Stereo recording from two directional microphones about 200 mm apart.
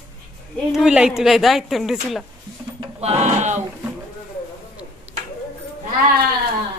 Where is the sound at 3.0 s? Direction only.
35° right (ahead or behind).